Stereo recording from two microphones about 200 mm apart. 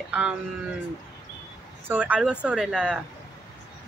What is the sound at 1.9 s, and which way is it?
Speech, 10° right (ahead or behind).